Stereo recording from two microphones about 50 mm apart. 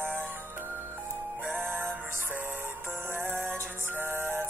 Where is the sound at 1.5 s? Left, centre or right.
Right.